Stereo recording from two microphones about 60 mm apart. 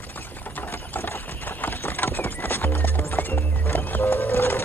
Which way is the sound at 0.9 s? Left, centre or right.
Left.